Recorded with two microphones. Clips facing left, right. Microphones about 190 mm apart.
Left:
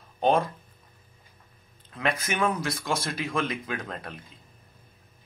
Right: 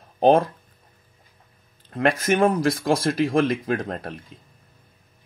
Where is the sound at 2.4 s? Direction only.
55° right (ahead or behind).